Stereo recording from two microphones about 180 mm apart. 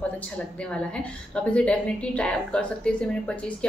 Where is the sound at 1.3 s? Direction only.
5° left (ahead or behind).